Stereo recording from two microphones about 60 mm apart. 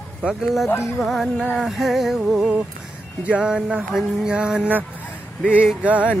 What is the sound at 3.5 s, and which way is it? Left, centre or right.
Speech, centre.